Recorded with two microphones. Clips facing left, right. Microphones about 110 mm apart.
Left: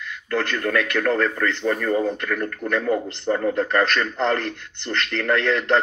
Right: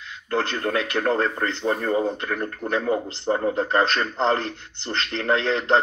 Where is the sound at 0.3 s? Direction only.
25° right (ahead or behind).